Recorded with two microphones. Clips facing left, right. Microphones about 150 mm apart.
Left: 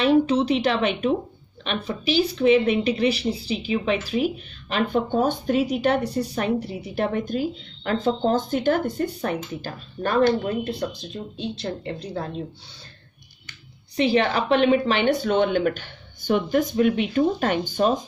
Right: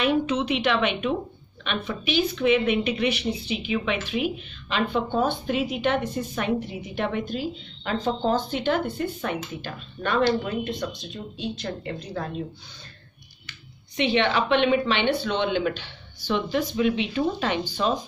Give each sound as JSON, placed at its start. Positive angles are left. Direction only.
{"t": 0.0, "sound": "speech", "side_deg": 35}
{"t": 13.5, "sound": "speech", "side_deg": 35}